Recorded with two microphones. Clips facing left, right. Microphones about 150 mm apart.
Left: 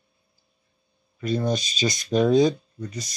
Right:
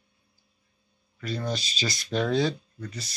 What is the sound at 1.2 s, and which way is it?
Speech, 20° left (ahead or behind).